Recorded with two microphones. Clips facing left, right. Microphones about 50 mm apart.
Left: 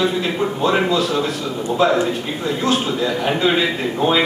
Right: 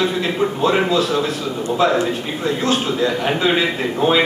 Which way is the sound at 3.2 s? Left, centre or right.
Centre.